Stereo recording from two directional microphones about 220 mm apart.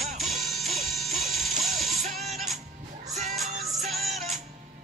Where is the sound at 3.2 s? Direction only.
30° right (ahead or behind).